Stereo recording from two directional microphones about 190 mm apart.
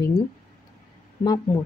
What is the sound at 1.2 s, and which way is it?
Speech, 20° left (ahead or behind).